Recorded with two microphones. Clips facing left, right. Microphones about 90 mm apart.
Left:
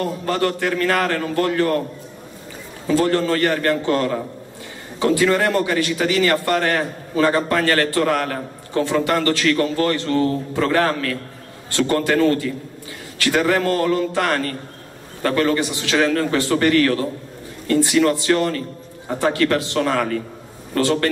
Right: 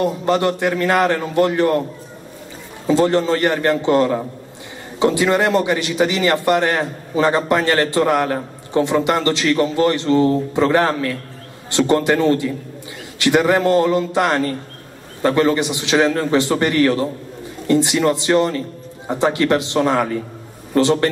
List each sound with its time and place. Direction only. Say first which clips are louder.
0.0 s a man's voice: right 4 dB; 20° right (ahead or behind)
2.9 s a man's voice: right 2 dB; 20° right (ahead or behind)